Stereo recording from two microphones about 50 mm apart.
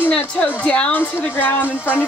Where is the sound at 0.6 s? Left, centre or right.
Left.